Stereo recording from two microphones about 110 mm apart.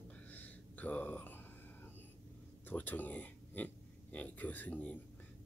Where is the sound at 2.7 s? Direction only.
15° left (ahead or behind).